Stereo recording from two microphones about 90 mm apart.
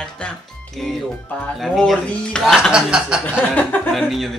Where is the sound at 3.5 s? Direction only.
20° left (ahead or behind).